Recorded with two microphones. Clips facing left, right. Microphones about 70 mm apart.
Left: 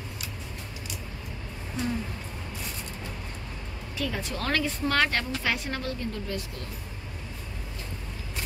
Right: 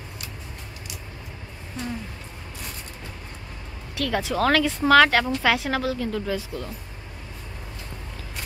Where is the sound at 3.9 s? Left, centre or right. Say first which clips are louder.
Right 7 dB; right.